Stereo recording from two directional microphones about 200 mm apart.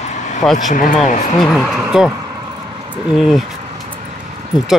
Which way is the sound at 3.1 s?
Centre (ahead or behind).